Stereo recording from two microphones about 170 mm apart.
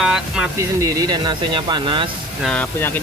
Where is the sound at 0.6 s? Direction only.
20° right (ahead or behind).